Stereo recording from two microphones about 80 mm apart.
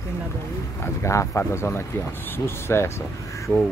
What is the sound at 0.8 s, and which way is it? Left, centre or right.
Speech, left.